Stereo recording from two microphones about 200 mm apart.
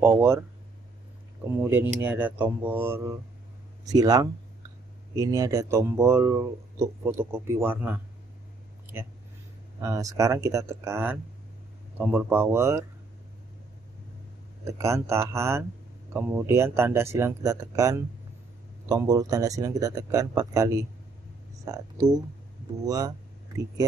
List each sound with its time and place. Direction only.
0.0 s a sound: 10° right (ahead or behind)
1.4 s speech: 10° right (ahead or behind)
9.8 s speech: 15° right (ahead or behind)
14.6 s speech: 15° right (ahead or behind)